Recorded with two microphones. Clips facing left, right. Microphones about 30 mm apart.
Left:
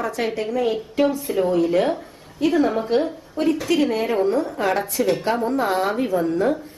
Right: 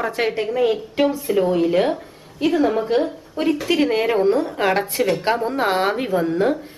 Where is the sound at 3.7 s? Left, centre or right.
Right.